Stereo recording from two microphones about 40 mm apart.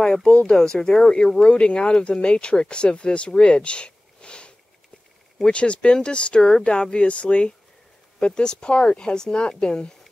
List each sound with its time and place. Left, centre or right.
0.0 s speech: centre
0.3 s speech: left
0.6 s speech: centre
5.5 s speech: left